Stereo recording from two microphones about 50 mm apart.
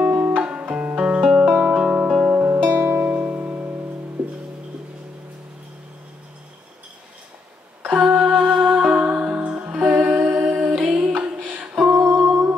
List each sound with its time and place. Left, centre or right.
0.0 s music: right
1.5 s music: right
2.4 s music: right
7.8 s mantra: right
8.4 s music: centre
8.9 s music: right
9.8 s humming: right
10.8 s music: right
11.9 s humming: right